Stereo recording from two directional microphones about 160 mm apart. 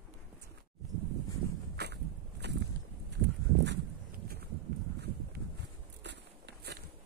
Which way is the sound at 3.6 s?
80° right.